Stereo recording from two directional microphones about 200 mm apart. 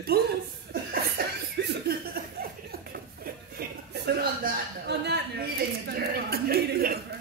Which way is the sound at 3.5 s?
50° right (ahead or behind).